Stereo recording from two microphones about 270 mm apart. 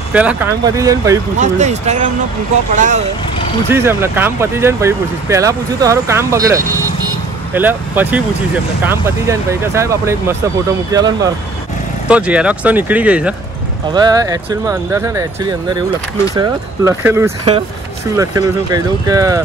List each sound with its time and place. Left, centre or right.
0.1 s speech: centre
1.4 s speech: right
3.7 s speech: centre